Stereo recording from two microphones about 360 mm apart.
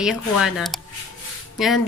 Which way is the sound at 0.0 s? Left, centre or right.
Centre.